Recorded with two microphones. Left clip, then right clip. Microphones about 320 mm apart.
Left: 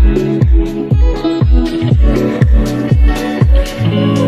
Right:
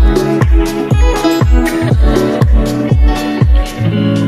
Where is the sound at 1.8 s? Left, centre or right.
Centre.